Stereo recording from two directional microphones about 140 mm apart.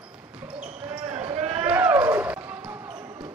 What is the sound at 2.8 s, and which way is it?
Basketball bounce, 30° right (ahead or behind).